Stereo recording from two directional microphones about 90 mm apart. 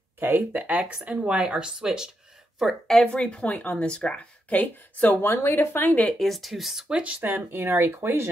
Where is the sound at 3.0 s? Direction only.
10° left (ahead or behind).